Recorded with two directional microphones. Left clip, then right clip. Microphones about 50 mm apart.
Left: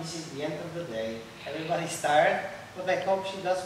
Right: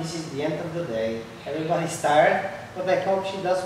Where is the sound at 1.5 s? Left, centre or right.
Left.